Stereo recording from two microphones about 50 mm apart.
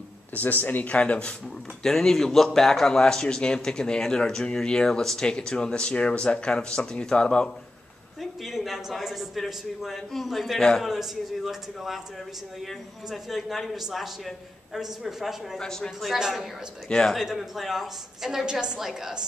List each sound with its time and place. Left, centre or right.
0.3 s speech: left
1.8 s speech: centre
8.2 s a man's voice: centre
15.6 s speech: centre
17.1 s a woman's voice: centre